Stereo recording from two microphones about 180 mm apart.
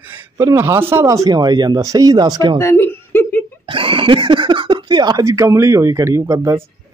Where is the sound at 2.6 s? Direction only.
15° left (ahead or behind).